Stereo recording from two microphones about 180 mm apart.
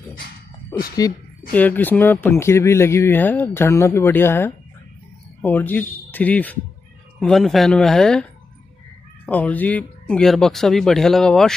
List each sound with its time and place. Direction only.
0.7 s speech: 20° left (ahead or behind); by 11.5 s centre (ahead or behind)